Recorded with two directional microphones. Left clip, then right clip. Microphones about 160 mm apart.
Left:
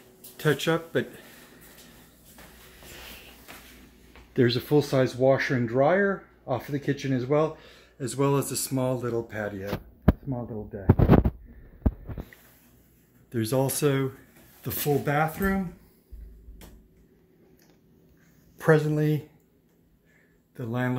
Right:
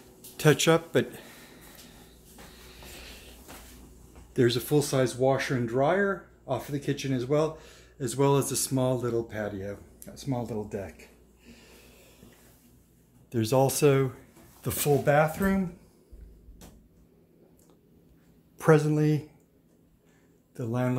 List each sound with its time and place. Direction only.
0.4 s speech: 15° right (ahead or behind)
4.3 s speech: 30° left (ahead or behind)
6.7 s speech: 40° left (ahead or behind)
7.0 s speech: 30° left (ahead or behind)
7.7 s speech: 10° left (ahead or behind)
10.2 s speech: 10° right (ahead or behind)
13.3 s speech: 10° right (ahead or behind)
18.6 s speech: 5° right (ahead or behind)
20.5 s speech: centre (ahead or behind)